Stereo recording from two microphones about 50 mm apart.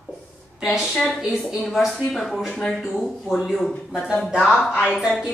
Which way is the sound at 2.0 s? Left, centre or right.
Centre.